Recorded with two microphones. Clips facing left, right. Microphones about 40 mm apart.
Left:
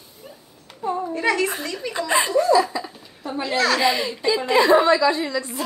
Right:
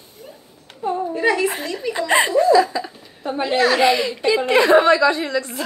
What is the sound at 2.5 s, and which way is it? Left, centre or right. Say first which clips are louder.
Laughter: right 3 dB; right.